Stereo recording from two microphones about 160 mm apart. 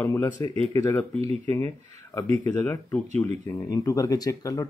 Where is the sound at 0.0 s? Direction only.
20° left (ahead or behind).